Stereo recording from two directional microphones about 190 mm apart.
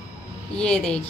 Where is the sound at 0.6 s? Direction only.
5° left (ahead or behind).